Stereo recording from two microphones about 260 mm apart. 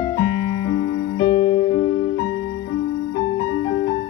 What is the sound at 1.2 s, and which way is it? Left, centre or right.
Music, left.